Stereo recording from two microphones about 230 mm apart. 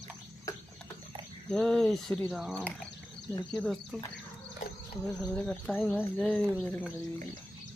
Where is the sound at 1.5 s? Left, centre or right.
Centre.